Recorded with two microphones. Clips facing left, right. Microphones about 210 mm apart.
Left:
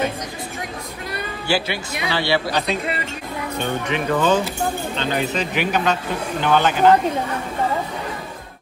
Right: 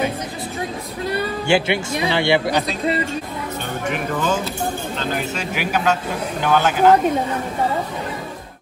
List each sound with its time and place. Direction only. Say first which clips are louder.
1.5 s speech: right 4 dB; 25° right (ahead or behind)
3.9 s speech: left 4 dB; 5° right (ahead or behind)